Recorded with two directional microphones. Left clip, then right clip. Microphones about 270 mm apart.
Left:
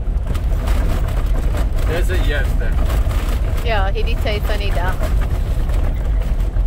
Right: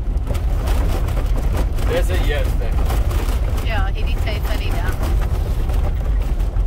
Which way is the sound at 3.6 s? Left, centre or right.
Left.